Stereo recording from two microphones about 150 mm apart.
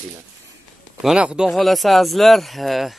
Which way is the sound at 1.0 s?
5° right (ahead or behind).